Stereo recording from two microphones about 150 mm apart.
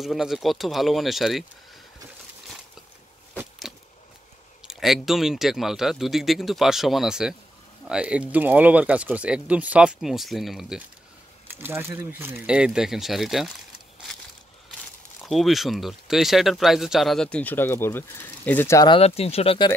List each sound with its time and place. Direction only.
0.0 s speech: centre (ahead or behind)
3.7 s a sound: centre (ahead or behind)
4.6 s speech: centre (ahead or behind)
11.5 s speech: 15° right (ahead or behind)
15.2 s speech: centre (ahead or behind); by 18.9 s 15° left (ahead or behind)
18.9 s speech: 40° left (ahead or behind)